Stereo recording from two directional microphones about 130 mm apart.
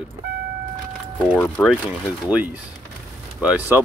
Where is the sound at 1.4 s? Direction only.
10° left (ahead or behind).